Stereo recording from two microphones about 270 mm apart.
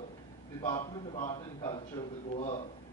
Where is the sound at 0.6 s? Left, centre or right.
Centre.